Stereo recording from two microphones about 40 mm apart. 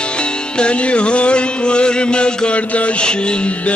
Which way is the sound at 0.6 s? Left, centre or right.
Left.